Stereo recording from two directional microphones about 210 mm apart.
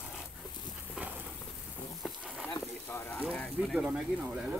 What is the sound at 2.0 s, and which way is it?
Frying, 5° right (ahead or behind).